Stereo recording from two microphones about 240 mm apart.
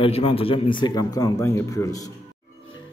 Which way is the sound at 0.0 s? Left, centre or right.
Left.